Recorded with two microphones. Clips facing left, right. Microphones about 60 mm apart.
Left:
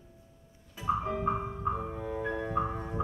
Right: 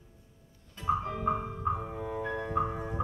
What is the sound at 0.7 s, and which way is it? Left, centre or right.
Music, centre.